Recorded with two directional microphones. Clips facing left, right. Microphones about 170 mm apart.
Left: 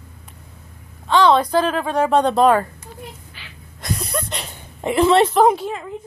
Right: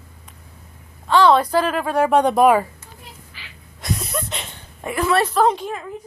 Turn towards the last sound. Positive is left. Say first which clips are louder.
# left 3 dB
turn(degrees=5)  # may be behind; listen again after turning